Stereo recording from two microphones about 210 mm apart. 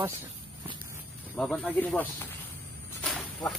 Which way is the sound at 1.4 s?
5° left (ahead or behind).